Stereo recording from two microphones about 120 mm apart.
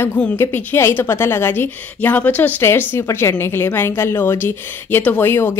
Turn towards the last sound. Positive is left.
turn(degrees=20)  # may be behind; listen again after turning